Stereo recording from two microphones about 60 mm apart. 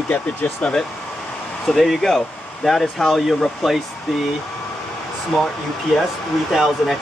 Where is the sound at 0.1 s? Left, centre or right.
Left.